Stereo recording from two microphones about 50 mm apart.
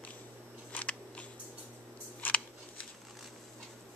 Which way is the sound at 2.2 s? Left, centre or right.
Left.